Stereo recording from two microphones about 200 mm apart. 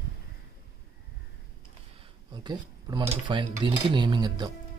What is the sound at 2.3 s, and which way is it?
Speech, 20° right (ahead or behind).